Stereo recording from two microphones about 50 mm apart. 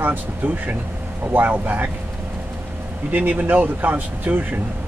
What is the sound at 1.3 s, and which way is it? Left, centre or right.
Speech, right.